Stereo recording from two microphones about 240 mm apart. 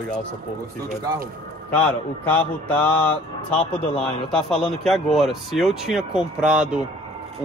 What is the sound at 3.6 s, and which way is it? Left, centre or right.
Speech, left.